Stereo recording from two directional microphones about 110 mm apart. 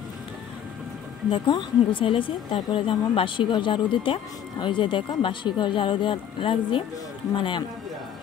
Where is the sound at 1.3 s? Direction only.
45° left (ahead or behind).